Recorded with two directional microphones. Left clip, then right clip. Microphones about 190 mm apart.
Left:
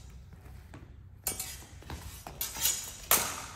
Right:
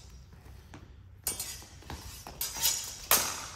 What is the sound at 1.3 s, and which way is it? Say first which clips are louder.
Chink: right 1 dB; centre (ahead or behind).